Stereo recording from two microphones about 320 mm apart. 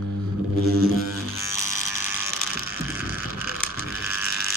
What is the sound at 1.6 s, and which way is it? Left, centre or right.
Electric shaver, centre.